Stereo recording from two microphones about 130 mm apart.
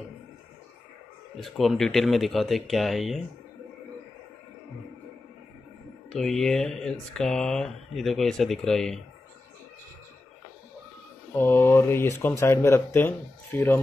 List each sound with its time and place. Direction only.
1.3 s speech: centre (ahead or behind)
6.1 s speech: 5° left (ahead or behind)
11.3 s speech: 15° left (ahead or behind)